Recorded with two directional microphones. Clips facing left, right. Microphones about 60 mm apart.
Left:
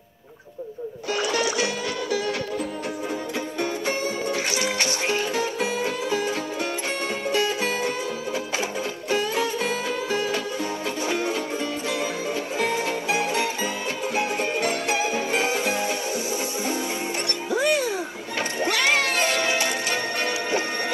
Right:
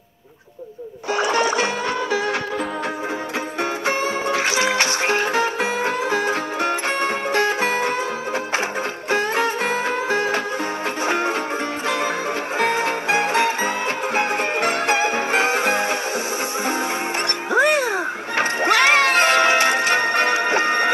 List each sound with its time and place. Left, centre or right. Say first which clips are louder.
1.1 s music: right 5 dB; right
3.8 s music: right 5 dB; right
5.0 s music: right 4 dB; right
9.1 s music: right 4 dB; right
12.5 s music: right 5 dB; right
17.5 s crowd: right 5 dB; right